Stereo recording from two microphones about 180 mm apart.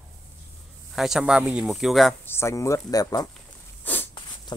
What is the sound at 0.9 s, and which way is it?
Speech, centre (ahead or behind).